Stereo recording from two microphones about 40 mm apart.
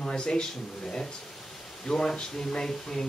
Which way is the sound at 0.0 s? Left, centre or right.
Centre.